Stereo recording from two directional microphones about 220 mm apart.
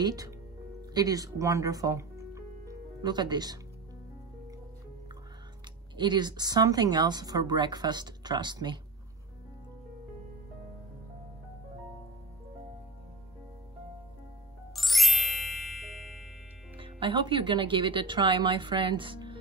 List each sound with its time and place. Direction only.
0.0 s speech: 15° right (ahead or behind)
5.9 s a woman's voice: 20° right (ahead or behind)
14.7 s music: centre (ahead or behind)
16.7 s a woman's voice: 25° right (ahead or behind)